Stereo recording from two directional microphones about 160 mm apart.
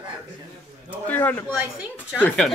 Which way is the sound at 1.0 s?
10° left (ahead or behind).